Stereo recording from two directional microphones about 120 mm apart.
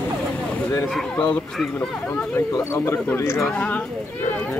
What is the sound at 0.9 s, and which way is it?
Speech, centre (ahead or behind).